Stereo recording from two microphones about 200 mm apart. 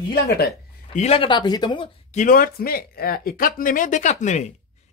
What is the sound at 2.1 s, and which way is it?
Speech, 40° left (ahead or behind).